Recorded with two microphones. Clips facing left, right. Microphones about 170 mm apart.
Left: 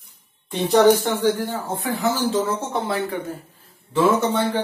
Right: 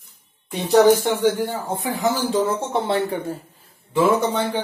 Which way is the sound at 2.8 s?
30° right (ahead or behind).